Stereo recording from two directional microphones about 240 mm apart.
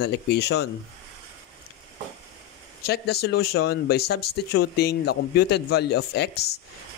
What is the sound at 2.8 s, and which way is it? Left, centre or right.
Speech, left.